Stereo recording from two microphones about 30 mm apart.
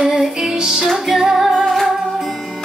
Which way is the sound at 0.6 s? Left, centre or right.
Right.